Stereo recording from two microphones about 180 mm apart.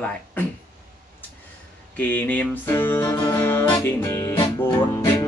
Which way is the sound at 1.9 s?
10° left (ahead or behind).